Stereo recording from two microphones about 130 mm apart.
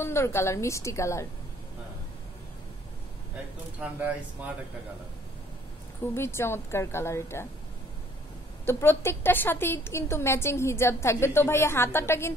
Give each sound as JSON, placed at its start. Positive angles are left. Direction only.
{"t": 0.0, "sound": "a woman's voice", "side_deg": 20}
{"t": 6.1, "sound": "a woman's voice", "side_deg": 20}
{"t": 8.6, "sound": "a woman's voice", "side_deg": 20}